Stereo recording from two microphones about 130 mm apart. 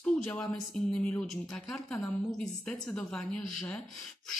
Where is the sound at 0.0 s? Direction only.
10° left (ahead or behind).